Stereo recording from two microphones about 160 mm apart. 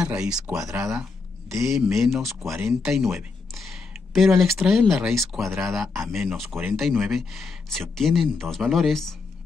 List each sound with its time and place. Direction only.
0.0 s speech: 5° right (ahead or behind)
0.7 s speech: 20° right (ahead or behind)
1.5 s speech: centre (ahead or behind)